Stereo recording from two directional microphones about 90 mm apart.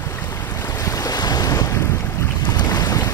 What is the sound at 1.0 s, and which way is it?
Waves, 45° left (ahead or behind).